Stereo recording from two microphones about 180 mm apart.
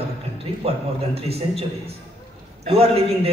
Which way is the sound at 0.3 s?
35° right (ahead or behind).